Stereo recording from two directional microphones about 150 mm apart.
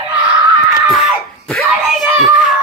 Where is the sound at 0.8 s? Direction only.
5° left (ahead or behind).